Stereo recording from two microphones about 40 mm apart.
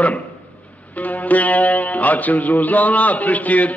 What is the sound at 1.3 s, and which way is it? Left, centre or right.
Speech, left.